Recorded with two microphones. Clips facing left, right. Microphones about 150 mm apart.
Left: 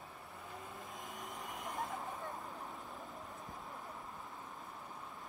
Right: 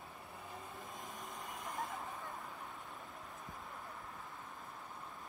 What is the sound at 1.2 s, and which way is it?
Vehicle, 20° left (ahead or behind).